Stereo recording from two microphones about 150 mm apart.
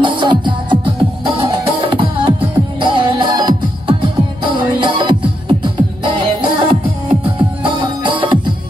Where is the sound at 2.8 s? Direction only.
30° right (ahead or behind).